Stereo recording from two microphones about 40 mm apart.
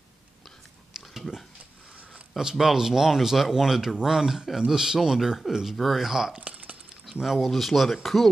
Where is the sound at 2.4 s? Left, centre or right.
Centre.